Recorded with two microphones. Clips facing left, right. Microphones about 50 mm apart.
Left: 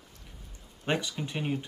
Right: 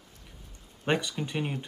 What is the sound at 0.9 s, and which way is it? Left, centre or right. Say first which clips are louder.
Speech: right 2 dB; centre.